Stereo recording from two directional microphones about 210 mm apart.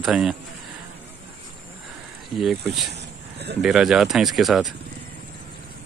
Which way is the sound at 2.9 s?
50° right (ahead or behind).